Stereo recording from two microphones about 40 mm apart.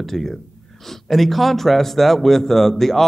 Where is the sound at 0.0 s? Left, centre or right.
Centre.